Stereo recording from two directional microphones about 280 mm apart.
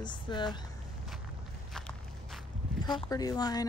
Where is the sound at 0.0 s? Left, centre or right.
Centre.